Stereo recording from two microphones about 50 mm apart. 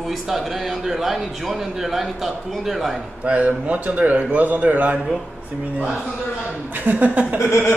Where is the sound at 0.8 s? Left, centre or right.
Centre.